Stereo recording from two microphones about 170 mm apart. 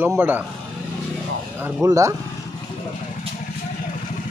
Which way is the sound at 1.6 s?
20° right (ahead or behind).